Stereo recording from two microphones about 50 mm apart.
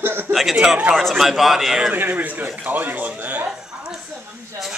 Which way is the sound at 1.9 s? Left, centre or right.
Right.